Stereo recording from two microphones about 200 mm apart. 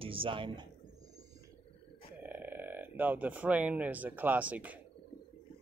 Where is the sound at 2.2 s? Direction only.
10° right (ahead or behind).